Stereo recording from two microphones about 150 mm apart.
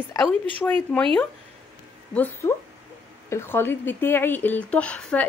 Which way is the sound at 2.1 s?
10° left (ahead or behind).